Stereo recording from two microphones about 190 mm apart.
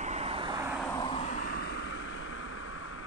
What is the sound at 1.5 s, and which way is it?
Vehicle, 60° left (ahead or behind).